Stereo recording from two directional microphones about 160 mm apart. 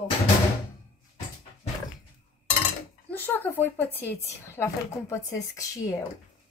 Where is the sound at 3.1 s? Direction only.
10° left (ahead or behind).